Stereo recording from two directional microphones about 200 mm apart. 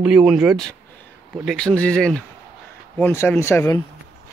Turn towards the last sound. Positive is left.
turn(degrees=15)  # may be behind; listen again after turning